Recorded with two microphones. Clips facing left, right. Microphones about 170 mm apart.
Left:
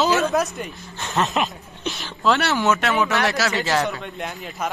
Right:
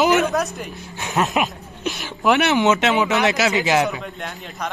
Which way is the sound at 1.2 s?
Centre (ahead or behind).